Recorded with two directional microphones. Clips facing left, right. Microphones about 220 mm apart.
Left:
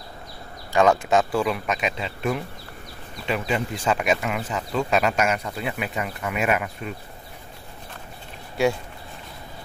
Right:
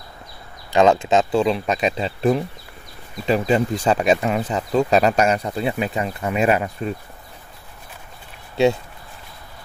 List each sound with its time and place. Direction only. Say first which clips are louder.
0.7 s speech: right 3 dB; 25° right (ahead or behind)